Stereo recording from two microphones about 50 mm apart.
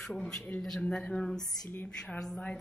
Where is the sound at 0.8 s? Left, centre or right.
Left.